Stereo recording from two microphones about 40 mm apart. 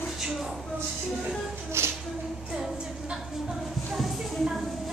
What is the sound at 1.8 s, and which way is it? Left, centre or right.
Music, right.